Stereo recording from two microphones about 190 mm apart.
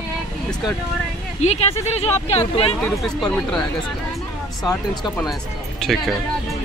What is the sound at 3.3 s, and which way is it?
Speech, 5° left (ahead or behind).